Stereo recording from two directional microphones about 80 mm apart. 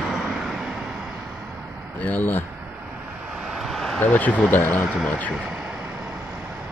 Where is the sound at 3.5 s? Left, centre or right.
Centre.